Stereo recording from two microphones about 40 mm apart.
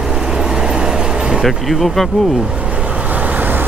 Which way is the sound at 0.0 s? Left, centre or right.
Centre.